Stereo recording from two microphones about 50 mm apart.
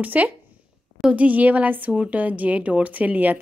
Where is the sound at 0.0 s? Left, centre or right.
Right.